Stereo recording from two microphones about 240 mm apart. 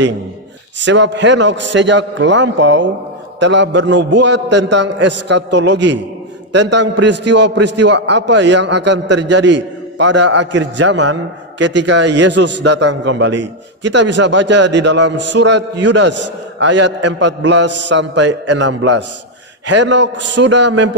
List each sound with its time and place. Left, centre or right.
0.7 s a man's voice: right